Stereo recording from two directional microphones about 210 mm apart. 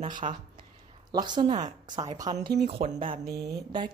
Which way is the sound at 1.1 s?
20° right (ahead or behind).